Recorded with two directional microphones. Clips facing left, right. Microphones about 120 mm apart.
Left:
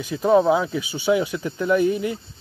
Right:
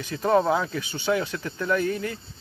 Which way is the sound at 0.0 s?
10° left (ahead or behind).